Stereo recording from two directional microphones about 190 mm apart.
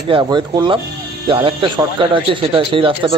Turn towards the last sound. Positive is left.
turn(degrees=-25)  # may be behind; listen again after turning